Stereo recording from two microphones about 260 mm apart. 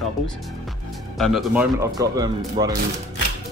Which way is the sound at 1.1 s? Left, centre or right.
Centre.